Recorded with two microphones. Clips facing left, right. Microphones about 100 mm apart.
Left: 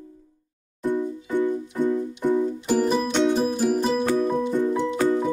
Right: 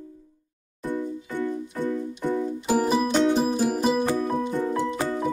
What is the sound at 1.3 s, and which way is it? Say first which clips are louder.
Music: left 6 dB; 15° left (ahead or behind).